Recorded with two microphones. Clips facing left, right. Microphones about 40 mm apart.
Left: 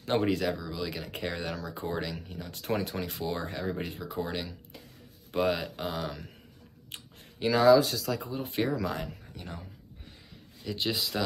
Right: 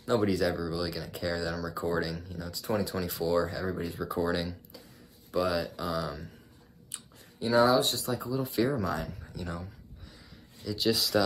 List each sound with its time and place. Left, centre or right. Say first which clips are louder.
0.0 s speech: right 1 dB; left
4.1 s speech: right 6 dB; left
5.3 s speech: even; left
6.9 s speech: left 4 dB; left
8.3 s speech: right 5 dB; left
9.3 s speech: right 4 dB; left
11.0 s speech: right 4 dB; centre